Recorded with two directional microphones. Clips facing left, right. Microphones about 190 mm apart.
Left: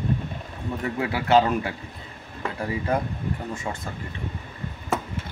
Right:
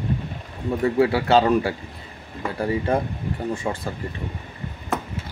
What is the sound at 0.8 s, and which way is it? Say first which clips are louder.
Speech: right 7 dB; 30° right (ahead or behind).